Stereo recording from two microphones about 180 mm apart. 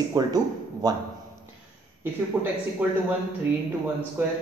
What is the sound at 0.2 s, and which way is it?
Speech, 20° right (ahead or behind).